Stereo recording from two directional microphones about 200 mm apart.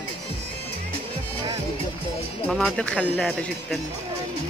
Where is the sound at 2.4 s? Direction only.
5° left (ahead or behind).